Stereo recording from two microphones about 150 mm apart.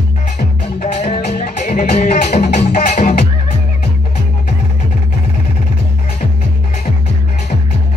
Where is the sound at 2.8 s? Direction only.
50° left (ahead or behind).